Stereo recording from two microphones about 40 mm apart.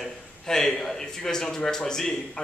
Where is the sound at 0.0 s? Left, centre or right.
Centre.